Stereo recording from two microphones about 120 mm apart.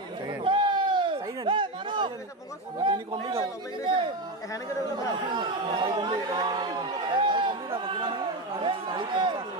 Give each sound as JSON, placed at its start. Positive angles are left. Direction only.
{"t": 0.3, "sound": "bleat", "side_deg": -40}
{"t": 2.8, "sound": "a sound", "side_deg": -45}
{"t": 5.3, "sound": "chatter", "side_deg": -40}